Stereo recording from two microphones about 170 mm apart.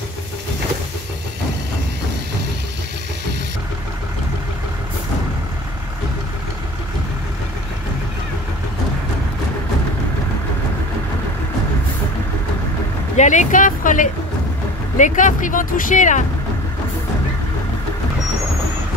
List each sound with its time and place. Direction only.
13.1 s speech: 45° left (ahead or behind)